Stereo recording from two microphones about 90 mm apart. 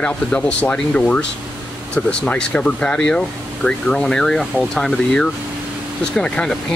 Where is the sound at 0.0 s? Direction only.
15° left (ahead or behind).